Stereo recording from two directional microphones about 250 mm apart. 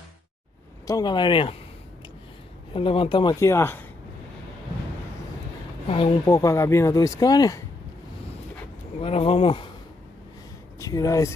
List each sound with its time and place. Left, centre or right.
0.8 s speech: centre
2.7 s speech: left
5.9 s speech: left
6.2 s speech: centre
9.0 s speech: left
10.8 s speech: centre